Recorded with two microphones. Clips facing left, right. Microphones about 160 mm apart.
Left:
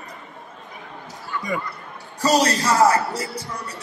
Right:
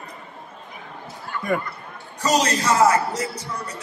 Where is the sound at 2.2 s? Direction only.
35° left (ahead or behind).